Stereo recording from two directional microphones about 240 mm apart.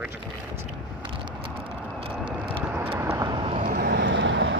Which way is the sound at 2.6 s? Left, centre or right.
Centre.